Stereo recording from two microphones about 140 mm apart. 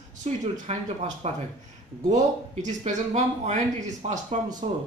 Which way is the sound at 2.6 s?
60° right (ahead or behind).